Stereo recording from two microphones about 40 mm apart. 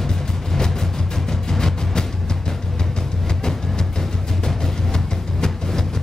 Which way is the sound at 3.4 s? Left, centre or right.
Centre.